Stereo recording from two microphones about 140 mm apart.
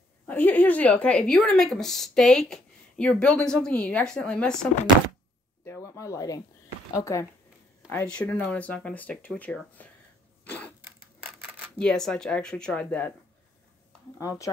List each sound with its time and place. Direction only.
0.3 s a woman's voice: 10° left (ahead or behind)
5.7 s speech: 20° left (ahead or behind)
7.9 s a woman's voice: 10° left (ahead or behind)
10.4 s a sound: 10° left (ahead or behind)
10.8 s a sound: 10° right (ahead or behind)
11.8 s speech: 5° left (ahead or behind)